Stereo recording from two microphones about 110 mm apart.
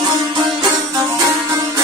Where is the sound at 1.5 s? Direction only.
35° right (ahead or behind).